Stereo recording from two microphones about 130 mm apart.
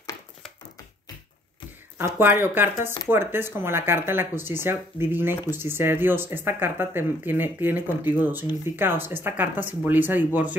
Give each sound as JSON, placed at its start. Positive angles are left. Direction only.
{"t": 2.0, "sound": "speech", "side_deg": -20}